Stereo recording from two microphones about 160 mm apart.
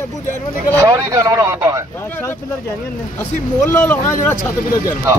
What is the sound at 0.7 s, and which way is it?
Speech, 20° right (ahead or behind).